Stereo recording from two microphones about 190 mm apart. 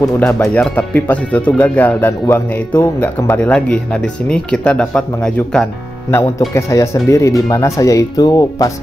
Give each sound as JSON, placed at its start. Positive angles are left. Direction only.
{"t": 0.4, "sound": "speech", "side_deg": 5}